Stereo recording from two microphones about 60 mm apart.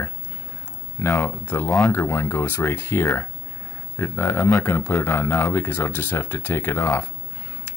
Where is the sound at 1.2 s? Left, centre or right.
Left.